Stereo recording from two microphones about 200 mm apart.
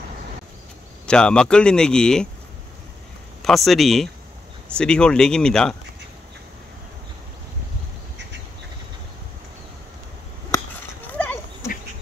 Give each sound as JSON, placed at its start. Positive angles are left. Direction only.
{"t": 1.0, "sound": "speech", "side_deg": 5}
{"t": 3.4, "sound": "speech", "side_deg": 0}
{"t": 11.1, "sound": "a sound", "side_deg": 10}